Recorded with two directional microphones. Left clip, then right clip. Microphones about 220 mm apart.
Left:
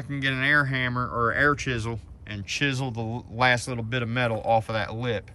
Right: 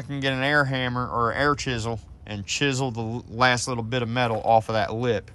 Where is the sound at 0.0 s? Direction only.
5° right (ahead or behind).